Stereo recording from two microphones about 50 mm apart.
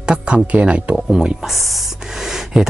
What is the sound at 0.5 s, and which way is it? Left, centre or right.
Speech, right.